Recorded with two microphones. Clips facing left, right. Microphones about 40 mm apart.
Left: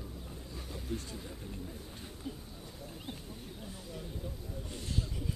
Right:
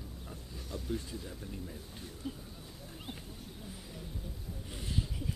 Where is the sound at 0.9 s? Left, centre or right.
Centre.